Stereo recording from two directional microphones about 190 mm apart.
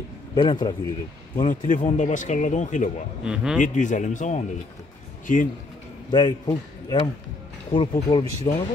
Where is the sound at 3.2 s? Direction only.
5° right (ahead or behind).